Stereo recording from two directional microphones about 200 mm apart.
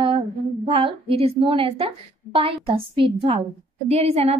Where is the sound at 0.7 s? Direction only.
25° right (ahead or behind).